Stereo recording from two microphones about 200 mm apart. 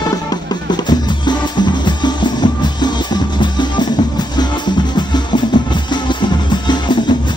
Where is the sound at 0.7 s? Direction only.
20° left (ahead or behind).